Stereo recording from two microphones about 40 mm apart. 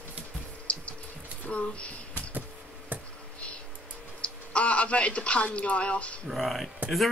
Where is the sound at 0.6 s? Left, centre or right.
Left.